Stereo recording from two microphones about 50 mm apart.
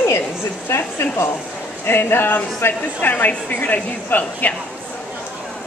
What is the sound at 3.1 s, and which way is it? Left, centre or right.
Speech, left.